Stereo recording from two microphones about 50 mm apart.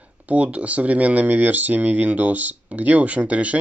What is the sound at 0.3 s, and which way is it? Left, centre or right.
Speech, right.